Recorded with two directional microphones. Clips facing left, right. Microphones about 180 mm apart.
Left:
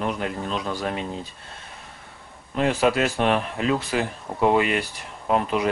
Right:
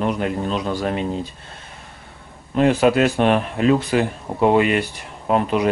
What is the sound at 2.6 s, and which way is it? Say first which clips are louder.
Speech: right 5 dB; centre (ahead or behind).